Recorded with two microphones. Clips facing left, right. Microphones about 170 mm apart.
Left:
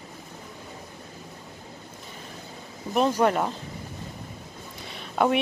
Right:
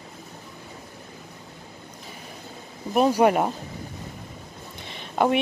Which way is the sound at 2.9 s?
10° right (ahead or behind).